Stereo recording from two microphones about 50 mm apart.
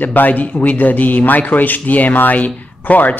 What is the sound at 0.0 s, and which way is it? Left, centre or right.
A man's voice, left.